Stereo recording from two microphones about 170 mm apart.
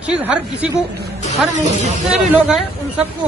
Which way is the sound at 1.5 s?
45° right (ahead or behind).